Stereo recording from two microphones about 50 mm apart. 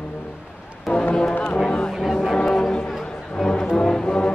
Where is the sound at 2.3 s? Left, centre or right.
Centre.